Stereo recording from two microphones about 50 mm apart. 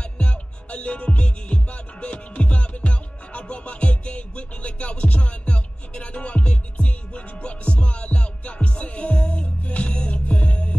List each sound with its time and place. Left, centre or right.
0.2 s music: left